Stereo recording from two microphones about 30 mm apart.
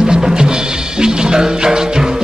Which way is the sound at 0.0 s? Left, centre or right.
Centre.